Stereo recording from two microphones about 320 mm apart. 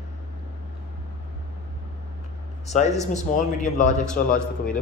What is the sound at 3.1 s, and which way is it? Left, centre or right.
A man's voice, left.